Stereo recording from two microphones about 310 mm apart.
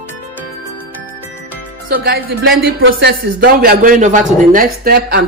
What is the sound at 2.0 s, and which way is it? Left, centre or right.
A man's voice, right.